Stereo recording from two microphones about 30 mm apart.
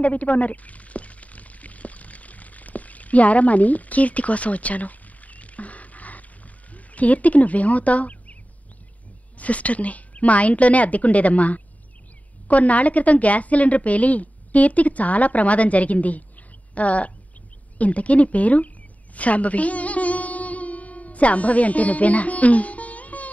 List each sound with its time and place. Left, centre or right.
0.0 s a sound: left
6.7 s speech: left
9.4 s a woman's voice: left
19.1 s music: left